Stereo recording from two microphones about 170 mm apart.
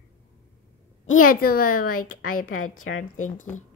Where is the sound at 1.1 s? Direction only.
55° left (ahead or behind).